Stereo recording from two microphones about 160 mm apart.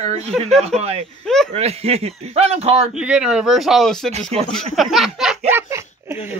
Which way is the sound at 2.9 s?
5° right (ahead or behind).